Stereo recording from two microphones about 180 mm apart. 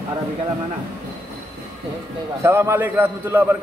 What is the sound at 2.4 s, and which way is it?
A man's voice, 15° right (ahead or behind).